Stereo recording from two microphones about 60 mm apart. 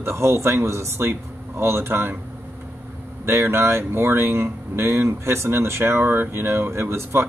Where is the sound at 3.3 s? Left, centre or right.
Right.